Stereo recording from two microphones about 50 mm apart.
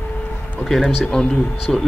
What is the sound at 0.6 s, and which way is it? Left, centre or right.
Speech, centre.